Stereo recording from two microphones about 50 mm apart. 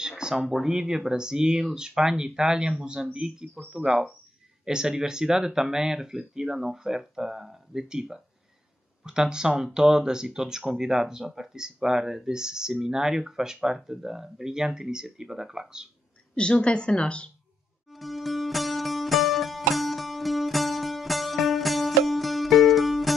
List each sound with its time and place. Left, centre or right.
0.2 s a sound: centre
0.6 s speech: centre
16.3 s speech: centre
17.8 s music: centre